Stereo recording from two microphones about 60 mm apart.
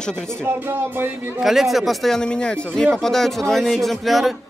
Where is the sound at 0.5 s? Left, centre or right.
Right.